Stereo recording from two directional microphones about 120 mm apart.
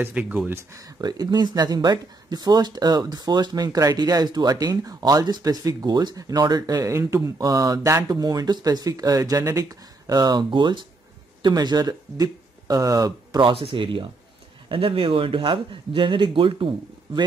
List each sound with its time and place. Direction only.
0.0 s speech: 10° right (ahead or behind)
0.7 s speech: 30° right (ahead or behind)
13.4 s speech: 45° right (ahead or behind)